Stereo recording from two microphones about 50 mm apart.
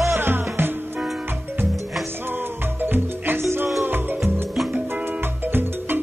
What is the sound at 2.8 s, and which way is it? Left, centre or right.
Music, right.